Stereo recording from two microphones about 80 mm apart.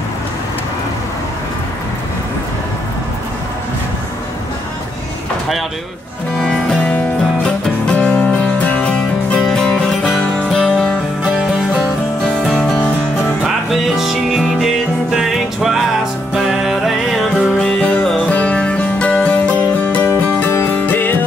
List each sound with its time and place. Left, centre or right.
7.4 s music: centre
12.5 s music: centre
17.8 s music: centre